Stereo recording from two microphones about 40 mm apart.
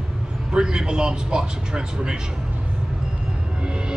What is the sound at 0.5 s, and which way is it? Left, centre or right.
A man's voice, centre.